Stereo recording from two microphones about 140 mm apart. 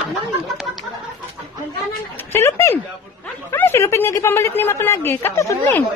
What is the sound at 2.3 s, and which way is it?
A woman's voice, 20° left (ahead or behind).